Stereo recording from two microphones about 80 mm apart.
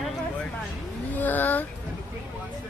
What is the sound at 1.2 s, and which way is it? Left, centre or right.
Speech, left.